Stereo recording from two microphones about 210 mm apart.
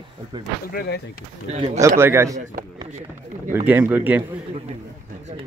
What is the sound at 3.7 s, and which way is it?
Speech, 10° right (ahead or behind).